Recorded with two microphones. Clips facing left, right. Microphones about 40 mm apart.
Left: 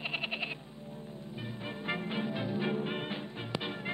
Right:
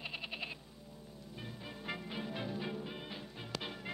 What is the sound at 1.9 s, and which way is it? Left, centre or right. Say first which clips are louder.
Music: left 7 dB; left.